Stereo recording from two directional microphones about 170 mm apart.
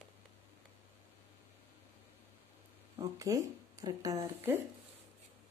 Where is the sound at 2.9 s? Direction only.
20° right (ahead or behind).